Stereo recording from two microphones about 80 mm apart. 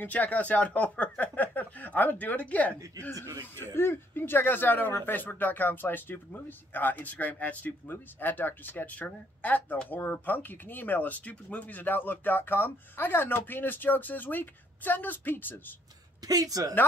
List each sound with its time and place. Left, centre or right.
0.0 s speech: left
3.7 s speech: left
16.3 s a woman's voice: right